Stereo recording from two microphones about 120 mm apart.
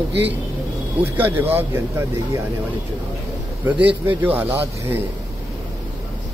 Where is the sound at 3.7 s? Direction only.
15° right (ahead or behind).